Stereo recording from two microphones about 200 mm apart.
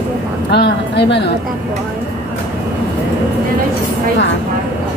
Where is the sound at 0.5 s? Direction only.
55° left (ahead or behind).